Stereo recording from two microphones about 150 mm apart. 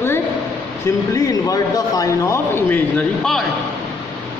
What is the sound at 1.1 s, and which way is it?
Speech, 25° left (ahead or behind).